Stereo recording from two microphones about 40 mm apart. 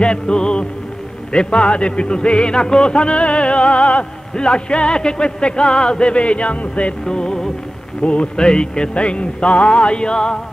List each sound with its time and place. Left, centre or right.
0.0 s music: left
7.1 s music: left